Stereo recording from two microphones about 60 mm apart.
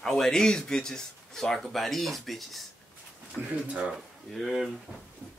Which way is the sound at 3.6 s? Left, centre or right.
Centre.